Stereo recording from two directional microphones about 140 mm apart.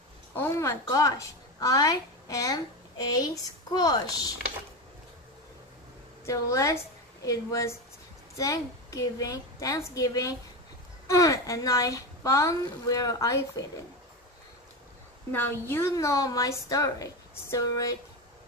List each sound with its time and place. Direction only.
0.3 s a woman's voice: 15° left (ahead or behind)
6.2 s a woman's voice: 20° left (ahead or behind)
15.3 s a woman's voice: 15° left (ahead or behind)